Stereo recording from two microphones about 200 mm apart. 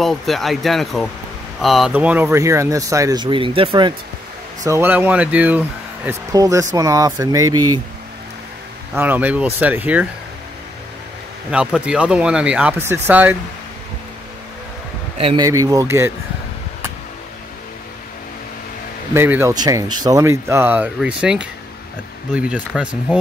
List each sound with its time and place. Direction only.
0.0 s speech: centre (ahead or behind); by 3.9 s 25° right (ahead or behind)
4.6 s speech: 10° right (ahead or behind)
8.9 s speech: 10° right (ahead or behind)
11.5 s speech: 5° right (ahead or behind)
15.1 s speech: 30° right (ahead or behind)
15.4 s speech: 15° right (ahead or behind)
19.1 s speech: 10° right (ahead or behind)